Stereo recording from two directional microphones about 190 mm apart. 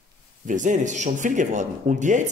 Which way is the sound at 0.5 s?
40° right (ahead or behind).